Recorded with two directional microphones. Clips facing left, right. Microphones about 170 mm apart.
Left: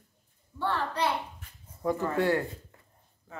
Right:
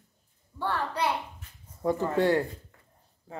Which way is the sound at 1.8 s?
20° right (ahead or behind).